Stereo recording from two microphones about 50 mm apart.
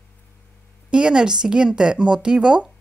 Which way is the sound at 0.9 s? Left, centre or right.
Centre.